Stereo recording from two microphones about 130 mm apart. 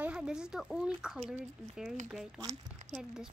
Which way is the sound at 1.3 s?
10° right (ahead or behind).